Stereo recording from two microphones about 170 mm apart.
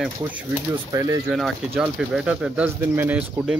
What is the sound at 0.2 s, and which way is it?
Speech, 10° right (ahead or behind).